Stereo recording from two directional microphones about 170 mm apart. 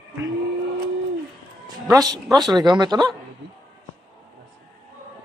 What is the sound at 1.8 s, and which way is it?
Speech, 20° right (ahead or behind).